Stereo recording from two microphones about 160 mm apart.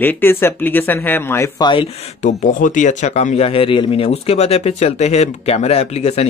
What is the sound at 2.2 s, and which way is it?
Speech, 55° left (ahead or behind).